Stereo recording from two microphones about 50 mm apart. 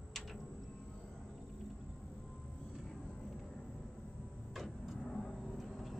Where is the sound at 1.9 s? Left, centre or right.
Centre.